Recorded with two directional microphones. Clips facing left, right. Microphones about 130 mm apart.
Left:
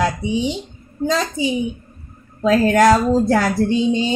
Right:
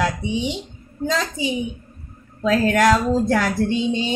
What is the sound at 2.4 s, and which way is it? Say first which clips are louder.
Speech: left 4 dB; 40° left (ahead or behind).